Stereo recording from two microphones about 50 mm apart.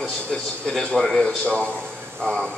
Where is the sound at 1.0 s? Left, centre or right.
Centre.